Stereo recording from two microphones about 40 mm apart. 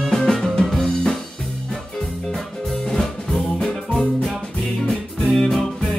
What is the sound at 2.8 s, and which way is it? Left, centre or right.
Music, centre.